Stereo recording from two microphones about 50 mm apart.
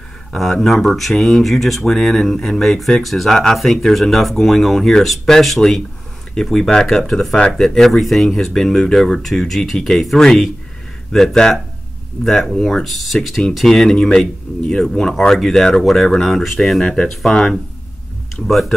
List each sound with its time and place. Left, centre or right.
0.4 s speech: centre
7.3 s speech: left
7.6 s speech: centre
16.8 s speech: centre
18.5 s speech: centre